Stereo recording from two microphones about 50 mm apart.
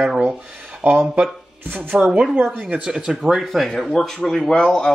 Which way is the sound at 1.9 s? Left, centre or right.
Right.